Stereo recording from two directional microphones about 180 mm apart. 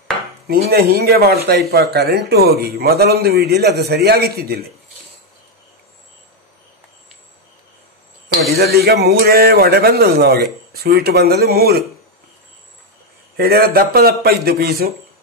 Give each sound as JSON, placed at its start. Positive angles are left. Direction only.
{"t": 0.5, "sound": "speech", "side_deg": -60}
{"t": 8.5, "sound": "speech", "side_deg": -60}
{"t": 13.4, "sound": "speech", "side_deg": -60}